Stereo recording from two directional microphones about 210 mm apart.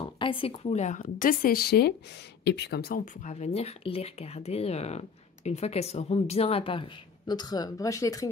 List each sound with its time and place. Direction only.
0.0 s a woman's voice: 25° left (ahead or behind)